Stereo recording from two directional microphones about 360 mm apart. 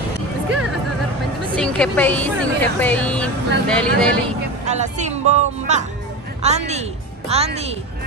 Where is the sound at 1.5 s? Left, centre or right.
Centre.